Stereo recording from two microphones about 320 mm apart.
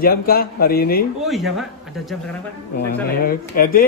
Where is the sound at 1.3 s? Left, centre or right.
Centre.